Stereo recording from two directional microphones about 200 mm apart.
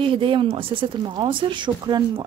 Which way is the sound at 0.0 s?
25° right (ahead or behind).